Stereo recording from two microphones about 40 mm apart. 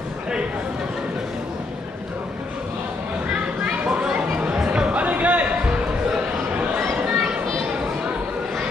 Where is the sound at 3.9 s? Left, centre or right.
Right.